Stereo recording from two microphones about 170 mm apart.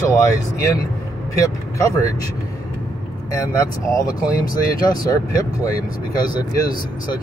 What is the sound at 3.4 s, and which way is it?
Speech, 20° left (ahead or behind).